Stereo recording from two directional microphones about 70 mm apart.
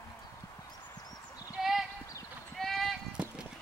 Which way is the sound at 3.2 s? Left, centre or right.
Centre.